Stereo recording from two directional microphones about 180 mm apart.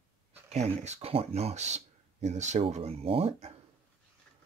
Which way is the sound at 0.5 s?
40° right (ahead or behind).